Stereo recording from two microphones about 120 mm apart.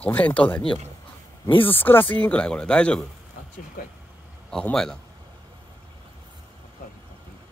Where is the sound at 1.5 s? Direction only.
45° left (ahead or behind).